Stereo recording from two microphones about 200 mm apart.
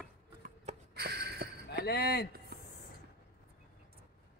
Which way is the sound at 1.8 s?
55° left (ahead or behind).